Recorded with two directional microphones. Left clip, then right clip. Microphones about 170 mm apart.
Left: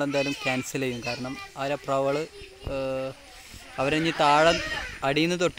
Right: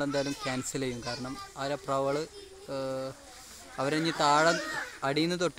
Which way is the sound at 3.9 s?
20° left (ahead or behind).